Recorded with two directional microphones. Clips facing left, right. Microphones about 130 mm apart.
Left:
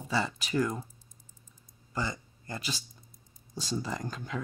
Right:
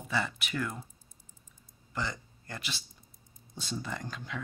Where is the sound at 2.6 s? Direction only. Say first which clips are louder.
Left 4 dB; 40° left (ahead or behind).